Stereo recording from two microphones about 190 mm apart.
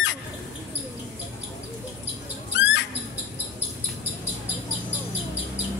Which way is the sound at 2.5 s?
70° left (ahead or behind).